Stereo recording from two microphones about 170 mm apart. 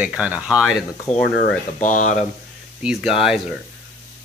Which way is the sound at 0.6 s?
5° left (ahead or behind).